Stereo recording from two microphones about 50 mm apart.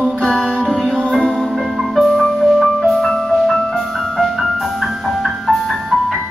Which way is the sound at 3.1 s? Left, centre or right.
Centre.